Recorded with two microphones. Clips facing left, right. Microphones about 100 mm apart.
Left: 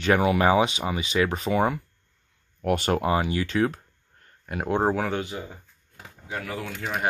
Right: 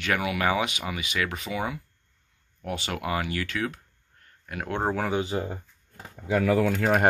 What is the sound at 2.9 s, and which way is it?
Speech, 30° left (ahead or behind).